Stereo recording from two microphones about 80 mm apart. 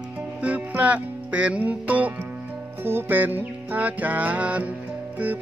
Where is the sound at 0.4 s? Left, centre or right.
Centre.